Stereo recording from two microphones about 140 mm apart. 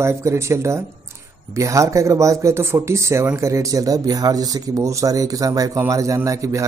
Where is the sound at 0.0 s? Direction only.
20° right (ahead or behind).